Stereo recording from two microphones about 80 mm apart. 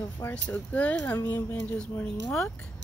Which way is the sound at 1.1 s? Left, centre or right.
Left.